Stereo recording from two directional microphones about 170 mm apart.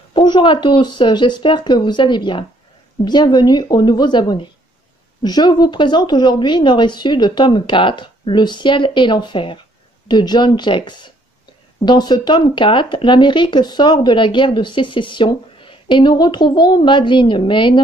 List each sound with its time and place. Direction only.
0.1 s speech: 25° left (ahead or behind)